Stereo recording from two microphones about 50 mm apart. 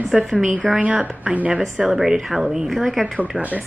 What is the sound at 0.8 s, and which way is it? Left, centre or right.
Speech, right.